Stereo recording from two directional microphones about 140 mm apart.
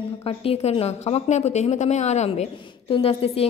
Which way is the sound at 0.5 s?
45° left (ahead or behind).